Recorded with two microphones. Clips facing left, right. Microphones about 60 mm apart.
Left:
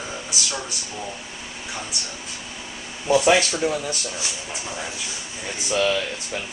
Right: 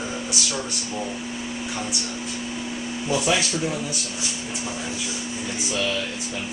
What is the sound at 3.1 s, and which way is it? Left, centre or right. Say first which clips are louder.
Speech: left 6 dB; left.